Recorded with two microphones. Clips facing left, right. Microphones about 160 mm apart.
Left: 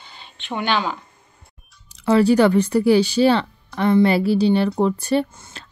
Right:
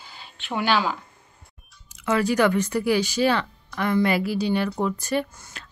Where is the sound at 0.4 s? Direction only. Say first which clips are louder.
Even; 5° right (ahead or behind).